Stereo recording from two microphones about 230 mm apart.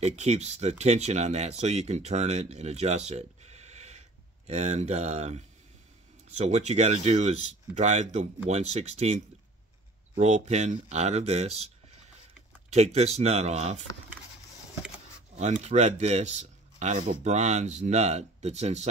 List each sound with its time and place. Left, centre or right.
0.0 s speech: right
15.3 s speech: right